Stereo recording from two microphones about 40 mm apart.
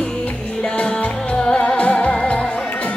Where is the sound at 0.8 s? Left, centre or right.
Left.